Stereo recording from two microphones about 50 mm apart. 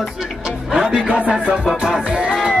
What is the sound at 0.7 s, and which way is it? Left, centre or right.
Music, centre.